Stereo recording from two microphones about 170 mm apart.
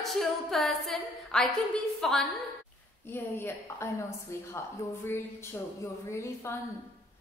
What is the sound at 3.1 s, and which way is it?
A woman's voice, 15° left (ahead or behind).